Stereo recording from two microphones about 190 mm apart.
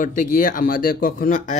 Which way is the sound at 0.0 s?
45° left (ahead or behind).